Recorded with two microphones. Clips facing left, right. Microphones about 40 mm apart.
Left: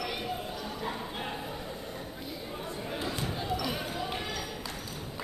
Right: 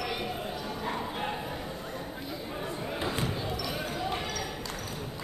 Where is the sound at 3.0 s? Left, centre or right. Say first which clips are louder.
Right 3 dB; right.